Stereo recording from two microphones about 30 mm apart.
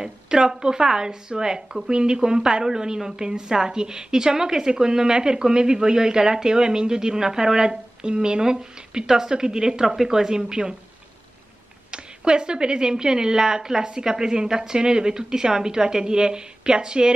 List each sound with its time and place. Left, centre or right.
0.0 s a woman's voice: right
11.9 s a woman's voice: right